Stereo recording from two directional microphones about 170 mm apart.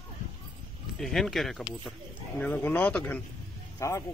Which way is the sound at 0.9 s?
Centre (ahead or behind).